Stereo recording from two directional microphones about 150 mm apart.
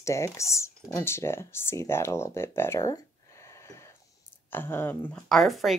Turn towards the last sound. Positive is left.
turn(degrees=0)  # may be behind; listen again after turning